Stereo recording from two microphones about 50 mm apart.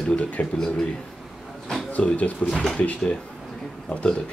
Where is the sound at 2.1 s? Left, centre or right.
Left.